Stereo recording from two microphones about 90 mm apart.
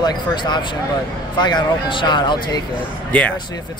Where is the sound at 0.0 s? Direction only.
50° left (ahead or behind).